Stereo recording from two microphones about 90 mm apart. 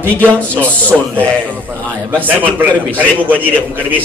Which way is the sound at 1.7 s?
20° right (ahead or behind).